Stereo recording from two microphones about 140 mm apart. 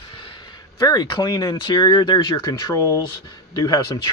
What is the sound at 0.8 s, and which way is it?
Speech, 30° left (ahead or behind).